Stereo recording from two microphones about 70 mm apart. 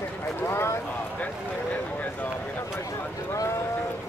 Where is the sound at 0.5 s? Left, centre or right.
Left.